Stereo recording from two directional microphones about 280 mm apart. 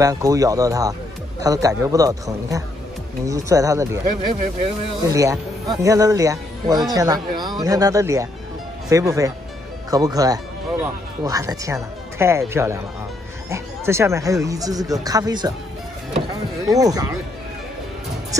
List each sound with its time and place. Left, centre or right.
0.0 s speech: centre
4.0 s speech: right
5.0 s speech: centre
16.6 s speech: centre